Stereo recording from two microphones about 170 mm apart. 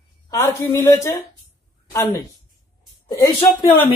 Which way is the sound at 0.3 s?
15° left (ahead or behind).